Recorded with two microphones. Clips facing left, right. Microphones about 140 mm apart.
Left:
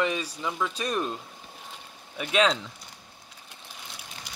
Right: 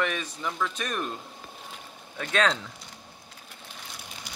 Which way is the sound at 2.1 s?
10° left (ahead or behind).